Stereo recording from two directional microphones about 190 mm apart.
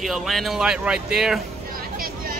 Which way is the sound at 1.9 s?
50° right (ahead or behind).